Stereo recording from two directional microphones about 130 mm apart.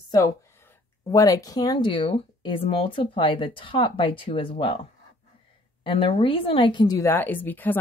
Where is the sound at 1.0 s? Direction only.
25° left (ahead or behind); by 4.8 s 45° left (ahead or behind).